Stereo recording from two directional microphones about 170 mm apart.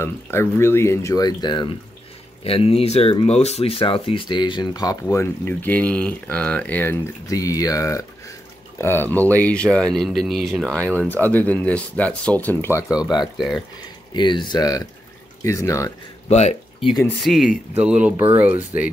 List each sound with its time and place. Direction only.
0.0 s speech: 15° left (ahead or behind)
14.1 s speech: 25° left (ahead or behind)
16.3 s speech: 40° left (ahead or behind)
17.2 s speech: centre (ahead or behind)